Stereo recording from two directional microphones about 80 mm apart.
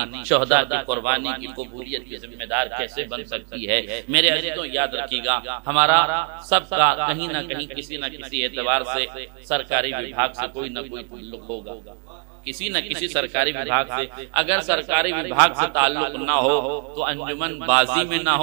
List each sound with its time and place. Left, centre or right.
0.0 s a man's voice: centre
12.4 s a man's voice: centre